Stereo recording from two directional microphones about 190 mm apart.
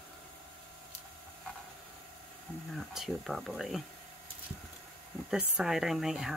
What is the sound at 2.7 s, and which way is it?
Speech, centre (ahead or behind).